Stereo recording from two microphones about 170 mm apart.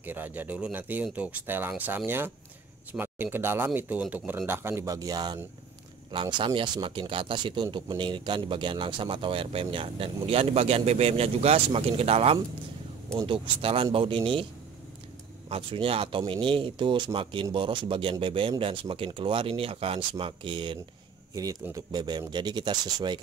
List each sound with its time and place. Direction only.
0.0 s speech: 10° right (ahead or behind); by 14.4 s 30° right (ahead or behind)
15.5 s speech: 35° right (ahead or behind)